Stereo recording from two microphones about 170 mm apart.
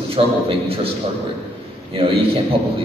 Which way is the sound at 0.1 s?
35° right (ahead or behind).